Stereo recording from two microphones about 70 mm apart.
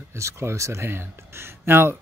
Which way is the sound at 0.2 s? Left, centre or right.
Right.